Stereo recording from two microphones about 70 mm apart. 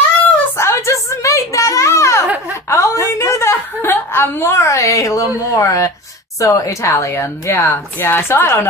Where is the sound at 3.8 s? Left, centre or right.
Left.